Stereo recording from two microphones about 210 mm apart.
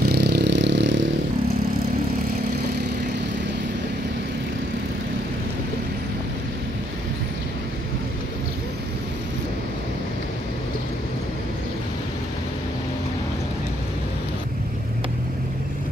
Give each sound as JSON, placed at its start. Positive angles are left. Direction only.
{"t": 0.1, "sound": "vehicle", "side_deg": -50}